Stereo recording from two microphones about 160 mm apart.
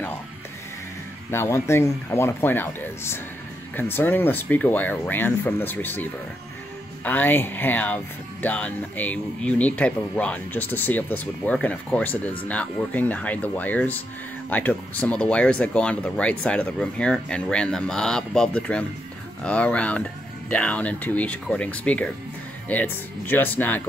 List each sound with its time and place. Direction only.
1.3 s speech: 15° left (ahead or behind)
7.1 s speech: 10° left (ahead or behind)